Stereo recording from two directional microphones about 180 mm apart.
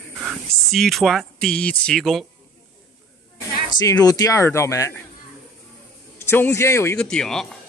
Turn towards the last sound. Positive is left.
turn(degrees=5)  # may be behind; listen again after turning